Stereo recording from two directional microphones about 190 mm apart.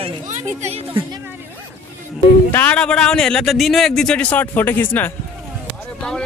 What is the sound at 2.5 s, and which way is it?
Speech, 10° left (ahead or behind).